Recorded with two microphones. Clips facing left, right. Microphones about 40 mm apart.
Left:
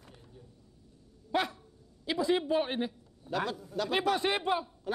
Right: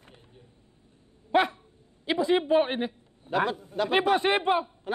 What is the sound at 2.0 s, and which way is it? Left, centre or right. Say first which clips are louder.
A man's voice: right 5 dB; right.